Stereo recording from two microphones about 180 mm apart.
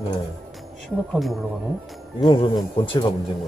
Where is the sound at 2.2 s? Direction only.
25° left (ahead or behind).